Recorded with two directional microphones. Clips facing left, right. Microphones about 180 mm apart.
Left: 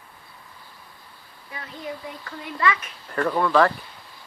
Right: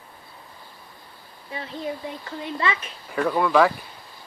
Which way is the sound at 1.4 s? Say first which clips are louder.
Right 4 dB; 25° right (ahead or behind).